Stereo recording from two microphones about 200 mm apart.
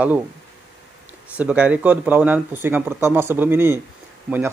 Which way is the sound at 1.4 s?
5° right (ahead or behind).